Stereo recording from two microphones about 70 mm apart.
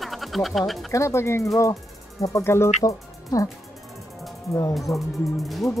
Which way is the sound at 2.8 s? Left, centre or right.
Left.